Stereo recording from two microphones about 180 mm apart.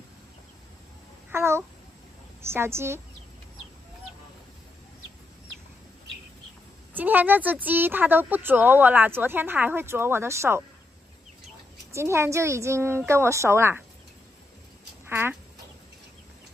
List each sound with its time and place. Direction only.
1.3 s babbling: 15° right (ahead or behind)
2.4 s speech: 15° right (ahead or behind)
6.9 s speech: 10° right (ahead or behind)
11.9 s speech: 15° right (ahead or behind)
15.0 s speech: 15° right (ahead or behind)